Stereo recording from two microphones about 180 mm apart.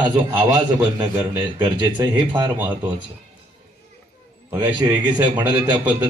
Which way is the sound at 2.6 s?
10° right (ahead or behind).